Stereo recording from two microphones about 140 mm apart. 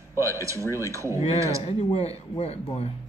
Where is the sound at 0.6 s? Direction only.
20° left (ahead or behind).